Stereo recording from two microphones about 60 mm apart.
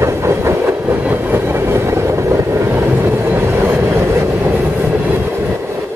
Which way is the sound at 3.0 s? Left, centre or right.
Right.